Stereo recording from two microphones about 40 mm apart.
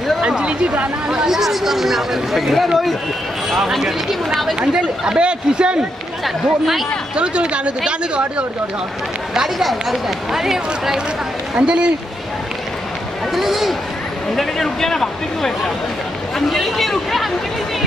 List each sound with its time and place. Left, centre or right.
0.4 s speech: right
1.3 s speech: centre
4.6 s speech: right
6.2 s speech: centre
7.2 s speech: right
9.6 s speech: centre
11.5 s speech: right
13.3 s speech: centre
14.3 s speech: centre